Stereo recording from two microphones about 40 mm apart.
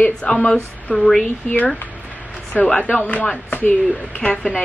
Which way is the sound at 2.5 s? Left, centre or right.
Left.